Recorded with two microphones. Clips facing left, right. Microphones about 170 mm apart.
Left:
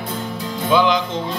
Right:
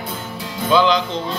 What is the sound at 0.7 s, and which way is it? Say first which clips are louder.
Music: right 1 dB; 20° left (ahead or behind).